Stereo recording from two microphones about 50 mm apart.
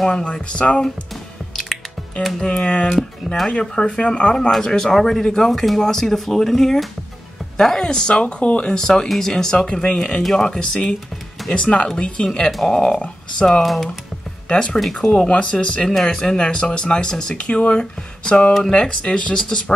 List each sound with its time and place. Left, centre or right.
0.1 s speech: left
2.4 s speech: centre
5.5 s speech: centre; by 8.7 s left
8.7 s speech: centre
12.4 s speech: centre
13.6 s speech: centre
14.5 s speech: left
14.8 s speech: centre
15.0 s speech: left
17.5 s speech: left